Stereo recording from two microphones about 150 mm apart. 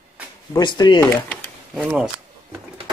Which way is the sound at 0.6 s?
30° left (ahead or behind).